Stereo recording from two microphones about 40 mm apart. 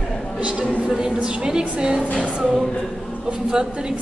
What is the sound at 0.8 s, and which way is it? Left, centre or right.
Speech, centre.